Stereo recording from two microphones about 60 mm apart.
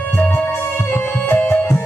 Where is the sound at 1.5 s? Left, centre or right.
Left.